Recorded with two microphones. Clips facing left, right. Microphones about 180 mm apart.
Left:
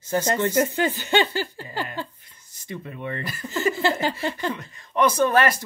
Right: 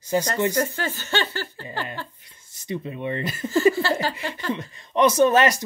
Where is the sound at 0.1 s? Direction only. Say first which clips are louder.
Right 1 dB; 15° right (ahead or behind).